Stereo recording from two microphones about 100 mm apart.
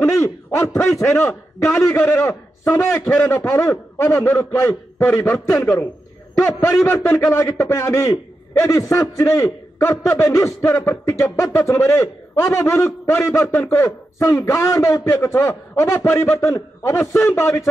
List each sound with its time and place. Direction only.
0.0 s a man's voice: 25° left (ahead or behind)